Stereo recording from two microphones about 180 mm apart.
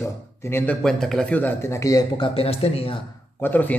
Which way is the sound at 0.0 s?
15° left (ahead or behind).